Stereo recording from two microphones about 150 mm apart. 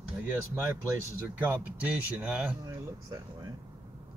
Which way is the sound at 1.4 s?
10° right (ahead or behind).